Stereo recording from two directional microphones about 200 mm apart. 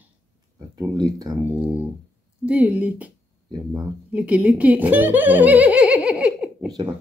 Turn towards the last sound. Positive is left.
turn(degrees=-5)  # may be behind; listen again after turning